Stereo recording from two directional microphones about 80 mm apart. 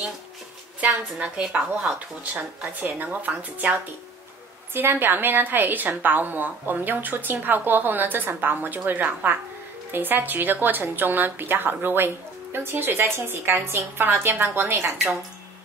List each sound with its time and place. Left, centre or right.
1.2 s speech: centre
2.7 s a woman's voice: right